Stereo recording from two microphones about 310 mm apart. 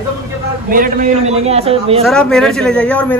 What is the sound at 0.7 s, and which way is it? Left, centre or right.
A man's voice, right.